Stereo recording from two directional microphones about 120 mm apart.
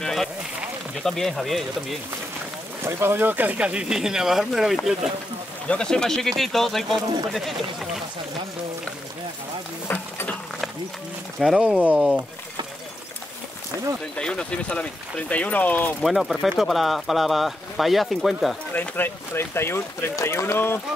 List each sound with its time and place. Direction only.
0.0 s a sound: 5° left (ahead or behind)
1.0 s speech: centre (ahead or behind)
2.8 s speech: 20° right (ahead or behind); by 8.0 s centre (ahead or behind)
11.3 s speech: 5° right (ahead or behind)
14.1 s speech: 5° left (ahead or behind)
16.0 s speech: centre (ahead or behind)
18.7 s speech: 15° left (ahead or behind)